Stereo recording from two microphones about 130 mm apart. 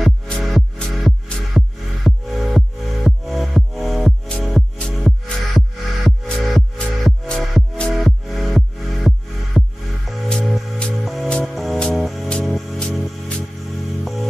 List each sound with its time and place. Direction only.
0.0 s music: centre (ahead or behind)